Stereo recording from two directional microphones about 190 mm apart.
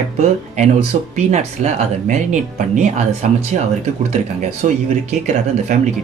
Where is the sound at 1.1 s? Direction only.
35° right (ahead or behind).